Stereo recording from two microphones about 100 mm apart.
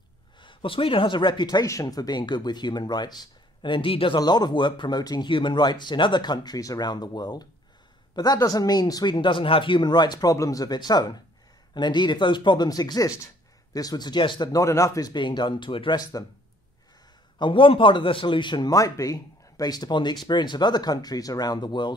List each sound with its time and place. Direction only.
0.4 s speech: 60° left (ahead or behind)
4.2 s speech: 45° left (ahead or behind)
14.5 s speech: 30° left (ahead or behind)
15.1 s speech: 50° left (ahead or behind)
17.4 s a man's voice: 55° left (ahead or behind)
18.7 s speech: 35° left (ahead or behind)